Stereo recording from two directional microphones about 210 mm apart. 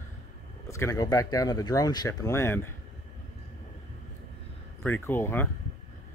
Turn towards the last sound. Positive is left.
turn(degrees=10)  # may be behind; listen again after turning